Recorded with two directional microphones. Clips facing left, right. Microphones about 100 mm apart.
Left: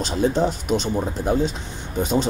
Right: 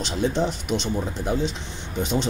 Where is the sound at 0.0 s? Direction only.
45° left (ahead or behind).